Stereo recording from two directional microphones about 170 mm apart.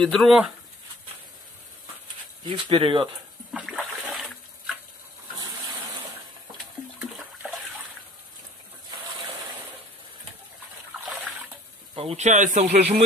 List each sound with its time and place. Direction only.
0.0 s speech: centre (ahead or behind)
2.5 s speech: 30° right (ahead or behind)
3.5 s water: centre (ahead or behind)
7.0 s toilet flush: 5° right (ahead or behind)
11.9 s speech: 35° right (ahead or behind)